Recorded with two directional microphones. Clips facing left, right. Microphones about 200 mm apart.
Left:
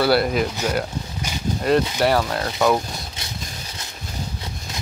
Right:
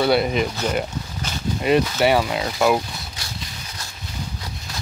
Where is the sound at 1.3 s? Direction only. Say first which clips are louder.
Left 1 dB; 10° left (ahead or behind).